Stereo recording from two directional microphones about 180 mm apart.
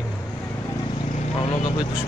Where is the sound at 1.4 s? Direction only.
30° left (ahead or behind).